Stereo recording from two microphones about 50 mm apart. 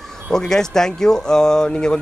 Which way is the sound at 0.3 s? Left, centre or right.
Centre.